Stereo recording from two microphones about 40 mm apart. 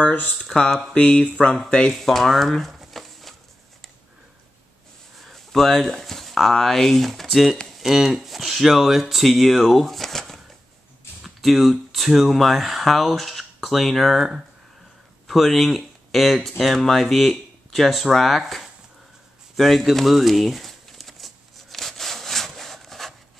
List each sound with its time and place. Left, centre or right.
0.0 s speech: left
0.5 s speech: centre
0.9 s speech: left
1.9 s a sound: centre
5.2 s speech: centre
15.2 s speech: centre
19.5 s a sound: centre